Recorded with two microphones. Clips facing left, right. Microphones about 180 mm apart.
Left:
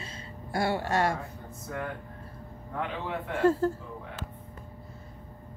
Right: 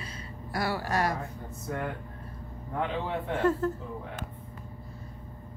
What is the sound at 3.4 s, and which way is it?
Speech, 30° left (ahead or behind).